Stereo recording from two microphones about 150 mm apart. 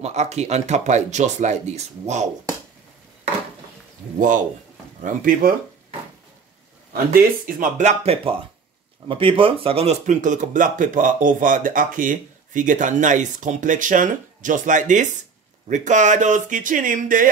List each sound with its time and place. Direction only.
0.0 s speech: 45° right (ahead or behind)
4.2 s speech: 60° right (ahead or behind)
6.9 s speech: 75° right (ahead or behind)